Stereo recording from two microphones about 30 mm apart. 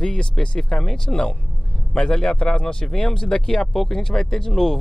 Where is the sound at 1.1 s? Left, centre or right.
Left.